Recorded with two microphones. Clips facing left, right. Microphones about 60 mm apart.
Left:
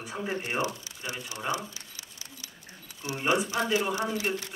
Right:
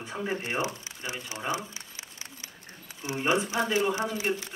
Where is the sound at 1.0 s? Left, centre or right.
Right.